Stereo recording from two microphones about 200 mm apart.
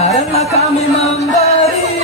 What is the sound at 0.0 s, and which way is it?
Music, 35° left (ahead or behind).